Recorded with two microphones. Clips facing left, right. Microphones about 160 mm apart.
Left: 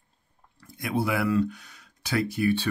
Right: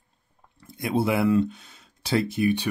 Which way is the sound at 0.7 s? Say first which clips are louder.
Right 3 dB; 25° right (ahead or behind).